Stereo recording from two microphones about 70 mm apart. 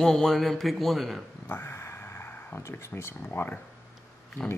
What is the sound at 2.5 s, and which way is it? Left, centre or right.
Speech, left.